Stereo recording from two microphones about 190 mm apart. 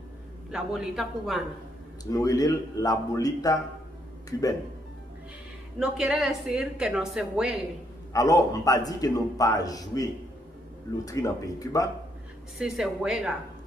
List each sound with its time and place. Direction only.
0.5 s a woman's voice: centre (ahead or behind)
2.0 s a man's voice: 20° left (ahead or behind)
5.8 s a woman's voice: 5° right (ahead or behind)
8.1 s a man's voice: 15° left (ahead or behind)
11.1 s speech: 20° left (ahead or behind)
12.5 s a woman's voice: centre (ahead or behind)